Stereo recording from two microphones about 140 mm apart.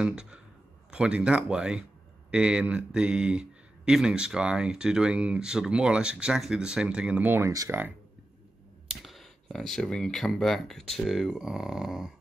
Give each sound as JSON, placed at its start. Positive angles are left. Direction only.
{"t": 0.0, "sound": "speech", "side_deg": -5}
{"t": 9.0, "sound": "speech", "side_deg": 0}